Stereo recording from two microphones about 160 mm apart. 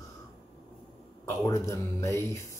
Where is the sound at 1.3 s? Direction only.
20° left (ahead or behind).